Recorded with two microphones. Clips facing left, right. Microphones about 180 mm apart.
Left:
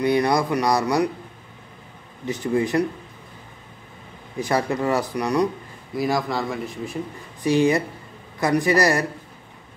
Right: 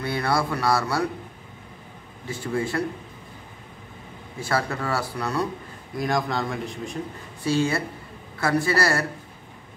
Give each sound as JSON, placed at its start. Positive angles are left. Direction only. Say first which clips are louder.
{"t": 0.0, "sound": "speech", "louder": "left 5 dB", "side_deg": 15}
{"t": 2.2, "sound": "speech", "louder": "left 5 dB", "side_deg": 20}
{"t": 4.4, "sound": "speech", "louder": "left 4 dB", "side_deg": 15}
{"t": 5.9, "sound": "a man's voice", "louder": "left 2 dB", "side_deg": 5}
{"t": 7.4, "sound": "speech", "louder": "left 5 dB", "side_deg": 15}